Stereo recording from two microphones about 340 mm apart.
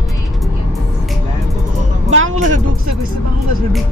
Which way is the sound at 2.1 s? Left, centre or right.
Right.